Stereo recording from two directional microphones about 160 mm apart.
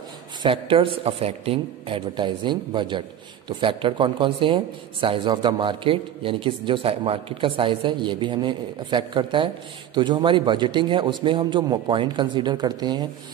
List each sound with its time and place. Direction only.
0.4 s a man's voice: 35° right (ahead or behind)